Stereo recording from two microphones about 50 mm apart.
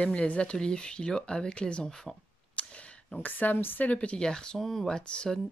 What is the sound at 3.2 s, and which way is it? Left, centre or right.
Speech, left.